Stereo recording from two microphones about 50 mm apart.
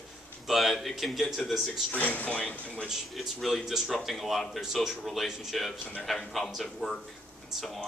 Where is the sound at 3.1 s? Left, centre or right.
Centre.